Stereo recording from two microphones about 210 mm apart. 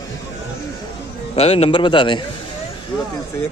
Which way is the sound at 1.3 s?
30° left (ahead or behind).